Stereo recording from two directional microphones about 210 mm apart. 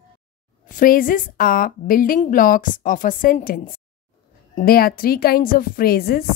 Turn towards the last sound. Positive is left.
turn(degrees=45)  # may be behind; listen again after turning